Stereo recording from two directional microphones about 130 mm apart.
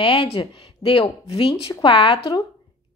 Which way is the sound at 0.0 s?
45° left (ahead or behind).